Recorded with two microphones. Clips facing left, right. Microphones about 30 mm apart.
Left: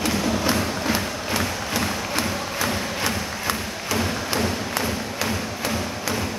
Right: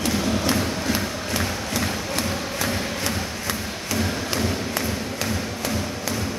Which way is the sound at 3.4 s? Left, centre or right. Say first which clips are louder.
Left 2 dB; centre.